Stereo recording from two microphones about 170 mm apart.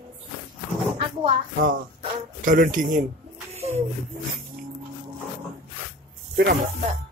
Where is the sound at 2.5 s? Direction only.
55° right (ahead or behind).